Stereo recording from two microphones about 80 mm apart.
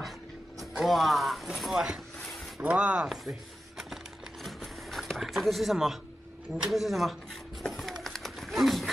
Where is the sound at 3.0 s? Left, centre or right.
Centre.